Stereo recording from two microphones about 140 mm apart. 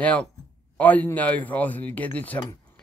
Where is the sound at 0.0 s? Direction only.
10° left (ahead or behind).